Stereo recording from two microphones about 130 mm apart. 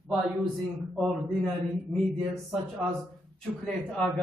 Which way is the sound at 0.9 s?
5° left (ahead or behind).